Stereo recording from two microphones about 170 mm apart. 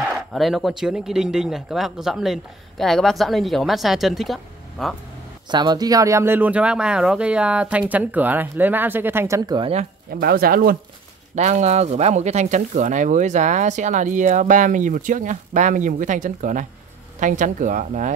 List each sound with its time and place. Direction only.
0.0 s speech: centre (ahead or behind)
5.5 s speech: 25° right (ahead or behind)
9.5 s speech: 30° right (ahead or behind)
10.1 s speech: 65° right (ahead or behind)
11.3 s speech: 45° right (ahead or behind)